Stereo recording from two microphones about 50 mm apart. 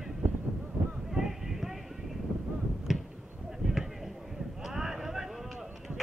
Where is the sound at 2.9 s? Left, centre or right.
Centre.